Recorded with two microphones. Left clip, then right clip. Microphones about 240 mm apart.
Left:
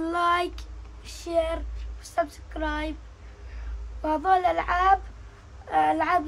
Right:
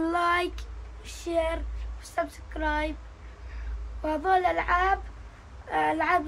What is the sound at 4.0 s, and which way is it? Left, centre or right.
A man's voice, centre.